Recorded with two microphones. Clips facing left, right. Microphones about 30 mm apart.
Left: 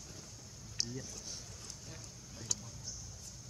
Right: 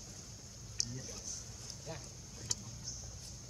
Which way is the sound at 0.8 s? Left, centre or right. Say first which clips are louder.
Left 2 dB; left.